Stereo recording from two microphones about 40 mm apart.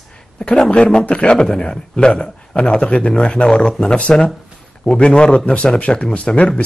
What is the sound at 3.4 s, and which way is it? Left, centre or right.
Speech, centre.